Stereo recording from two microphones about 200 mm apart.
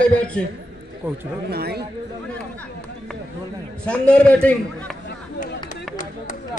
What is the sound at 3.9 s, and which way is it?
A man's voice, 5° left (ahead or behind).